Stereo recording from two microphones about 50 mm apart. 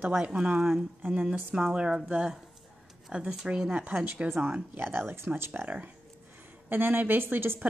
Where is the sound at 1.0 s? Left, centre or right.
Right.